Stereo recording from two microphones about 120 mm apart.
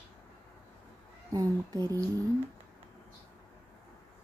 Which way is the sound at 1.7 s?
20° left (ahead or behind).